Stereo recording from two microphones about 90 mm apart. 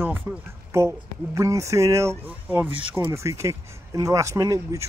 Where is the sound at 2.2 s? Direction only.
20° right (ahead or behind).